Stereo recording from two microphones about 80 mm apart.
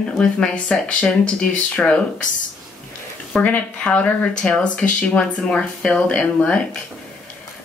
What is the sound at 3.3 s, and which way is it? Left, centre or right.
Speech, centre.